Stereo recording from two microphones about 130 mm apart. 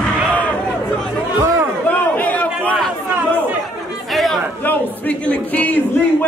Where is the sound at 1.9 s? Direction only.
10° left (ahead or behind).